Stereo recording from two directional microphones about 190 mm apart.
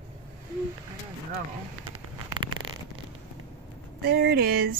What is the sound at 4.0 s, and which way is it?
Speech, 55° right (ahead or behind).